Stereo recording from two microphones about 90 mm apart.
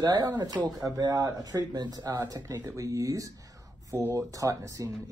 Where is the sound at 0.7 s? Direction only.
45° right (ahead or behind).